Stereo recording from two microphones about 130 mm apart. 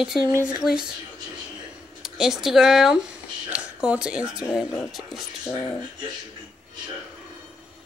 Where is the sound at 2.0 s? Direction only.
5° right (ahead or behind).